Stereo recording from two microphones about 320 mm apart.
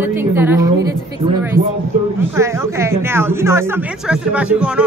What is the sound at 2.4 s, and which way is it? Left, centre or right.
Speech, centre.